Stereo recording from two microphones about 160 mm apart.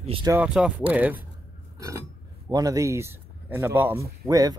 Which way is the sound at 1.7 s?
20° right (ahead or behind).